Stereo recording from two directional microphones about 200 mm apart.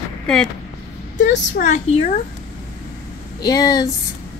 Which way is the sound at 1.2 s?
40° left (ahead or behind).